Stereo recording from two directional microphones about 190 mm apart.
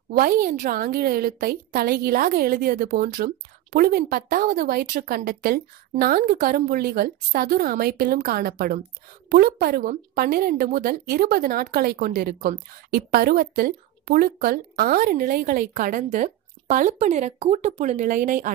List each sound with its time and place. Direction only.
0.1 s speech: 55° right (ahead or behind)